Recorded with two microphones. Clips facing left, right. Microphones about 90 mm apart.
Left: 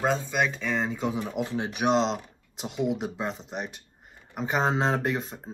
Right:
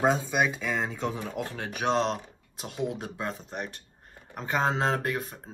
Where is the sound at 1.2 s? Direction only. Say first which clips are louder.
Left 4 dB; 20° left (ahead or behind).